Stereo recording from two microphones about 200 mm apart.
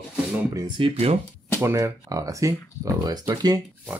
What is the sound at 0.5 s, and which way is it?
Speech, 25° right (ahead or behind).